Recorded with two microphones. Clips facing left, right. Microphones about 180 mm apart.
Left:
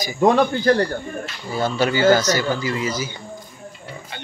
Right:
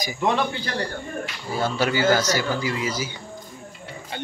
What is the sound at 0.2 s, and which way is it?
Speech, 45° left (ahead or behind).